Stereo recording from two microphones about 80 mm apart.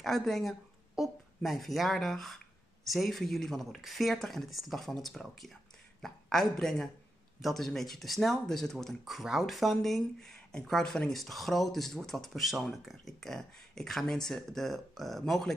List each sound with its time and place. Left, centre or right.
0.0 s speech: centre